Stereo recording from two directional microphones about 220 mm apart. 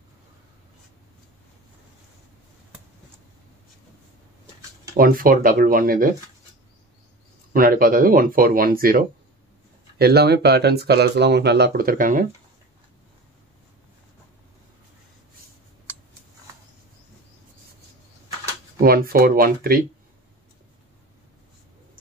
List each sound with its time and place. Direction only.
4.9 s speech: 40° right (ahead or behind)
7.5 s speech: 40° right (ahead or behind)
18.8 s speech: 45° right (ahead or behind)